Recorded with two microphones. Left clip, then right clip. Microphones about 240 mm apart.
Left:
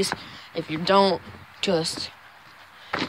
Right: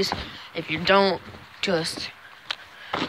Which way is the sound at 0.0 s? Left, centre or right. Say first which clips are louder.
Right 1 dB; left.